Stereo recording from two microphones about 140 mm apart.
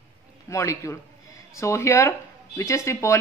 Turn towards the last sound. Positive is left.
turn(degrees=20)  # may be behind; listen again after turning